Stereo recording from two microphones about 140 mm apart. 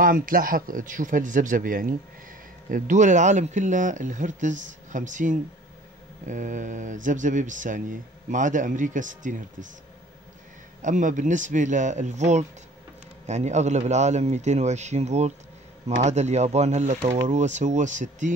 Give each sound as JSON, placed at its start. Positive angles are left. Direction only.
{"t": 0.0, "sound": "a man's voice", "side_deg": -90}
{"t": 2.7, "sound": "speech", "side_deg": -60}
{"t": 10.8, "sound": "speech", "side_deg": -60}